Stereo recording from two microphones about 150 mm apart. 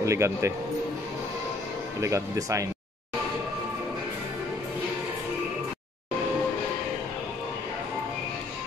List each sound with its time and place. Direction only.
0.0 s speech: 20° right (ahead or behind)
2.0 s speech: 20° right (ahead or behind)